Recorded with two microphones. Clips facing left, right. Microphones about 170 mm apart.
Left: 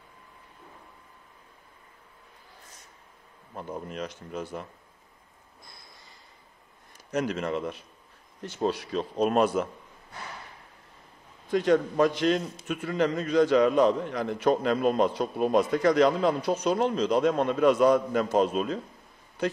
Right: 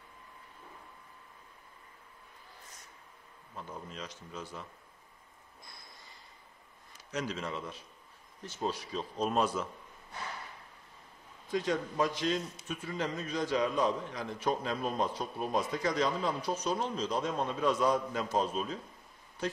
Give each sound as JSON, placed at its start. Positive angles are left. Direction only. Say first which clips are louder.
{"t": 3.5, "sound": "a man's voice", "louder": "left 8 dB", "side_deg": 55}
{"t": 7.1, "sound": "a man's voice", "louder": "left 8 dB", "side_deg": 55}
{"t": 11.5, "sound": "a man's voice", "louder": "left 9 dB", "side_deg": 65}
{"t": 19.4, "sound": "speech", "louder": "left 7 dB", "side_deg": 65}